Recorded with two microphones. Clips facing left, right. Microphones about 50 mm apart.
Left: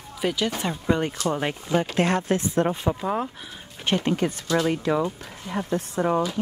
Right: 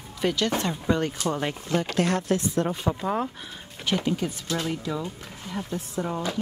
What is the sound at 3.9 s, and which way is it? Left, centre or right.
Speech, left.